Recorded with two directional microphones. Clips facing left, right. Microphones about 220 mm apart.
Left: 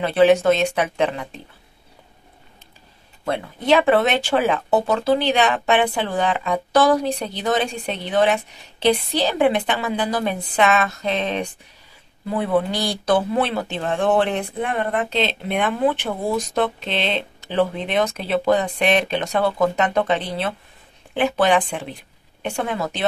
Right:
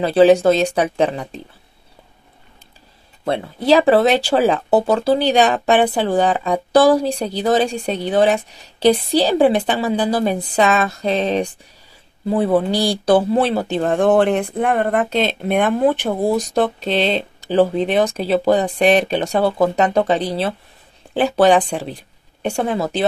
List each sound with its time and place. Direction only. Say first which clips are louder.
0.0 s speech: right 3 dB; 35° right (ahead or behind)
3.3 s speech: right 3 dB; 35° right (ahead or behind)